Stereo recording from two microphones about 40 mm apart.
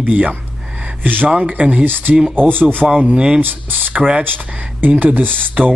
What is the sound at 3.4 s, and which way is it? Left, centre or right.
Speech, right.